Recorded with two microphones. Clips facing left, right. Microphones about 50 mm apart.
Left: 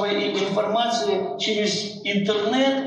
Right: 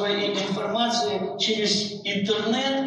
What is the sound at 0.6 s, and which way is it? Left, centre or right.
Speech, left.